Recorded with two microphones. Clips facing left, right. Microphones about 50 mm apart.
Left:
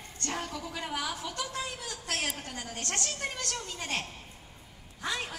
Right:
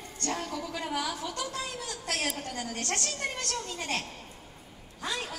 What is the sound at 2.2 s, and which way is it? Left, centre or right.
Speech, left.